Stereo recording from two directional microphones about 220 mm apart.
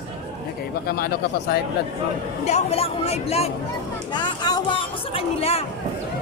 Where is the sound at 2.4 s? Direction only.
30° left (ahead or behind).